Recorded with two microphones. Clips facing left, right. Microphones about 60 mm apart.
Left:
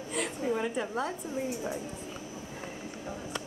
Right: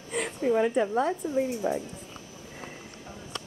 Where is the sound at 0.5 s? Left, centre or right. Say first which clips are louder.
Right 9 dB; centre.